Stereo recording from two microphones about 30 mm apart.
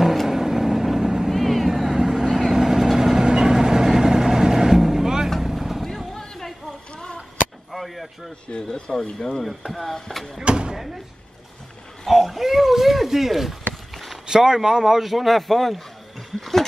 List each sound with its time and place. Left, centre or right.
0.3 s vehicle: centre
1.3 s vehicle: centre
6.1 s a sound: centre
7.7 s a sound: centre
8.5 s speech: left
8.9 s speech: centre
10.4 s speech: right
10.7 s speech: centre
12.1 s speech: centre
13.9 s a sound: centre
14.2 s speech: right; by 15.7 s centre
16.3 s a sound: centre